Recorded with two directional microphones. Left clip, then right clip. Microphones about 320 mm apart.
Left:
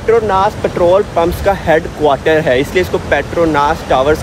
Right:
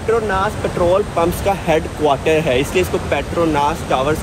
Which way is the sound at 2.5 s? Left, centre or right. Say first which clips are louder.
Left 4 dB; left.